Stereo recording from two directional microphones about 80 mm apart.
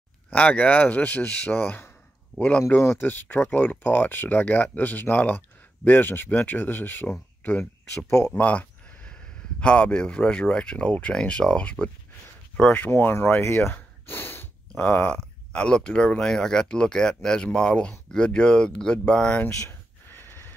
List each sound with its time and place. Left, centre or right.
0.3 s speech: centre
2.7 s speech: left; by 12.9 s centre
12.9 s speech: left
13.7 s a sound: left
14.7 s speech: centre
20.2 s train: left